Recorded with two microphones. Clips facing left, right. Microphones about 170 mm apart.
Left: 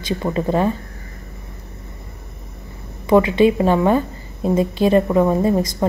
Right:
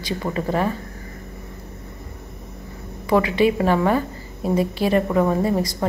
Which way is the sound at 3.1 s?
20° left (ahead or behind).